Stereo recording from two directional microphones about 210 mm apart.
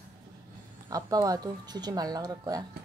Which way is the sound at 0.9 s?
15° right (ahead or behind).